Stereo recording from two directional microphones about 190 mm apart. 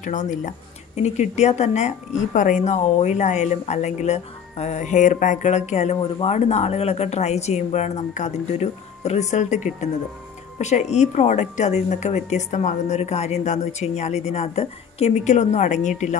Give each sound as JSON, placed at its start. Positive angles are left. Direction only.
{"t": 0.0, "sound": "a woman's voice", "side_deg": 40}